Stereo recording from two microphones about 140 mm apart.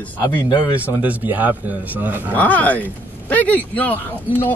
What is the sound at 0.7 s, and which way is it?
Speech, 10° right (ahead or behind).